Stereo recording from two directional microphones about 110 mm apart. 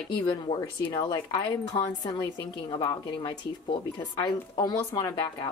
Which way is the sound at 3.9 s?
40° left (ahead or behind).